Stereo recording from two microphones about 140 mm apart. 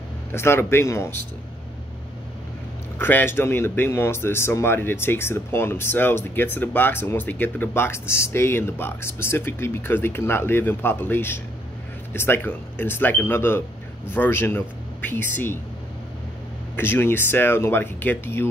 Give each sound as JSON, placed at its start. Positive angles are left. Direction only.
{"t": 0.3, "sound": "speech", "side_deg": 15}
{"t": 3.0, "sound": "speech", "side_deg": 15}
{"t": 16.7, "sound": "speech", "side_deg": 15}